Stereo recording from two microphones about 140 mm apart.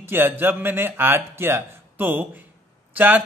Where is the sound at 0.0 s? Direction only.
15° right (ahead or behind).